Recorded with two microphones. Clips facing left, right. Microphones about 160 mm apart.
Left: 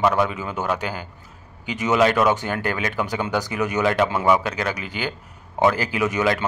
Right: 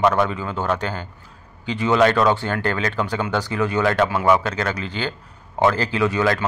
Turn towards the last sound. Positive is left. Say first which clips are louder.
# right 1 dB
turn(degrees=15)  # may be behind; listen again after turning